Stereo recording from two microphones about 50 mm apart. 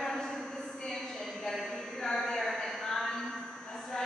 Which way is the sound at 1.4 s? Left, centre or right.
Centre.